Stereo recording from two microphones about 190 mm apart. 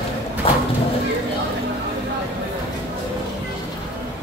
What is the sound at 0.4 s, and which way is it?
Bird, 30° left (ahead or behind).